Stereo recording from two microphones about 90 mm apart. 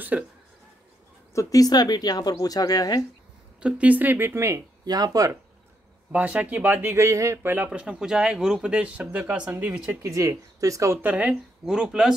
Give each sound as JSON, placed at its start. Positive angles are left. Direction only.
{"t": 0.1, "sound": "speech", "side_deg": -10}
{"t": 1.3, "sound": "speech", "side_deg": 40}
{"t": 3.6, "sound": "speech", "side_deg": -15}
{"t": 4.8, "sound": "speech", "side_deg": -45}
{"t": 6.1, "sound": "speech", "side_deg": -15}
{"t": 7.4, "sound": "speech", "side_deg": -20}
{"t": 10.0, "sound": "speech", "side_deg": -35}
{"t": 11.0, "sound": "speech", "side_deg": -15}